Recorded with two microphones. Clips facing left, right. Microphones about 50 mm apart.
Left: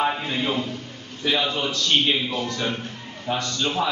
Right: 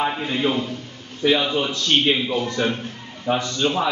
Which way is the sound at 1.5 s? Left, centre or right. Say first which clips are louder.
Right 2 dB; centre.